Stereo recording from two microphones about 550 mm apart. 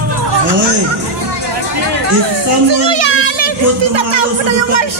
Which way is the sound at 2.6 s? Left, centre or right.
Right.